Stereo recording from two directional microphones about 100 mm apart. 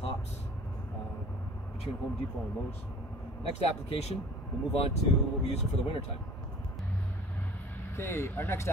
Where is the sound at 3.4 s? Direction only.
85° left.